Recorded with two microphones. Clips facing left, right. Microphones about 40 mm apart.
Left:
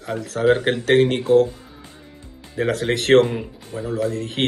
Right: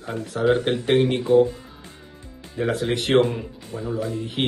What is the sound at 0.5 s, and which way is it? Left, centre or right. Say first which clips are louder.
Mantra: left 3 dB; left.